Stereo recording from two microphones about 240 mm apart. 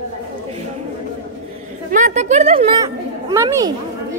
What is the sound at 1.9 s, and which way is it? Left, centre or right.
Speech, right.